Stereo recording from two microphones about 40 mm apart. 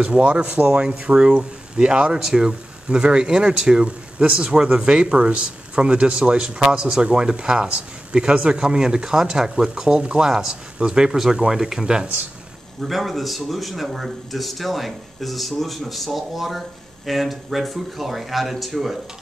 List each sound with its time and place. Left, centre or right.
0.0 s speech: right
2.1 s speech: centre
6.6 s speech: centre
12.8 s speech: centre